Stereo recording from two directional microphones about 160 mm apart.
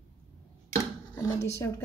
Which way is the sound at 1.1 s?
20° left (ahead or behind).